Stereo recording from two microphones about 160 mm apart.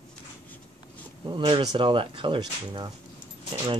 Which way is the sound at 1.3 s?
30° right (ahead or behind).